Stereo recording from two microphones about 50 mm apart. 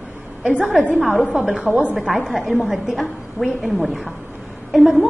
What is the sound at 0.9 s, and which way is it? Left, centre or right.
Speech, centre.